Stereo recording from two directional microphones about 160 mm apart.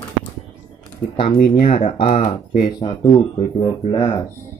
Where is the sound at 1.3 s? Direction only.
55° left (ahead or behind).